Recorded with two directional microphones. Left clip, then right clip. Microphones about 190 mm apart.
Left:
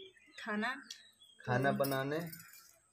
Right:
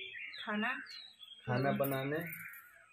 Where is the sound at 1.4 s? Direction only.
5° left (ahead or behind).